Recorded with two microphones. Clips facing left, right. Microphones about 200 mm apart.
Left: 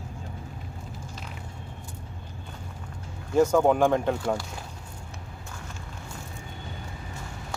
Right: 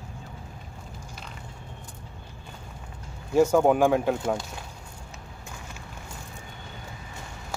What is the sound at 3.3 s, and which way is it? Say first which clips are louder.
Speech: right 1 dB; 10° right (ahead or behind).